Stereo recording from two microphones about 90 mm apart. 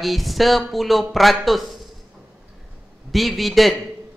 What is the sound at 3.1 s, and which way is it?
Speech, centre (ahead or behind).